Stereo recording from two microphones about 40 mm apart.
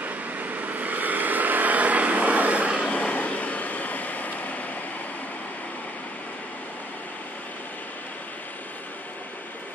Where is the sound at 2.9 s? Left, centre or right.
Left.